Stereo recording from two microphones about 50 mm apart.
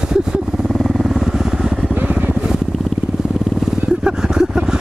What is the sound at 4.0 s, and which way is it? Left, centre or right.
Vehicle, centre.